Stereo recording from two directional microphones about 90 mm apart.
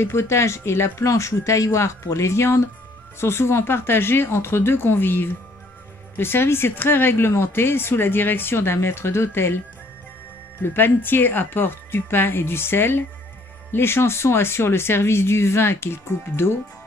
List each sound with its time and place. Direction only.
0.0 s speech: 30° left (ahead or behind)
10.6 s speech: 25° left (ahead or behind)